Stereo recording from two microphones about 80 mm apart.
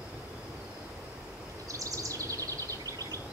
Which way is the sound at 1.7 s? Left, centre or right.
Right.